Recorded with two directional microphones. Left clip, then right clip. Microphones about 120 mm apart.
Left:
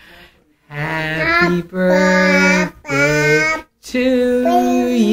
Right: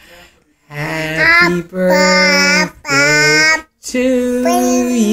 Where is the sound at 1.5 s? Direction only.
25° right (ahead or behind).